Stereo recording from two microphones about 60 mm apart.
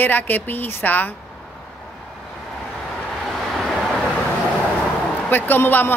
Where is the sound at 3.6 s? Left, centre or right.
Centre.